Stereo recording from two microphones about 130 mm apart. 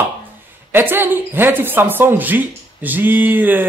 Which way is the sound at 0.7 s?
15° right (ahead or behind).